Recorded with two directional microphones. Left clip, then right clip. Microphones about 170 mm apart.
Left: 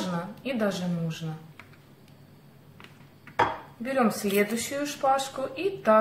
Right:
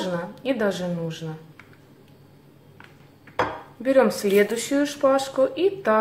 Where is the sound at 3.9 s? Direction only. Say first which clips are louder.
Right 6 dB; 35° right (ahead or behind).